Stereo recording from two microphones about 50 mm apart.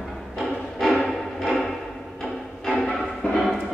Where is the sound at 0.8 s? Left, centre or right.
Centre.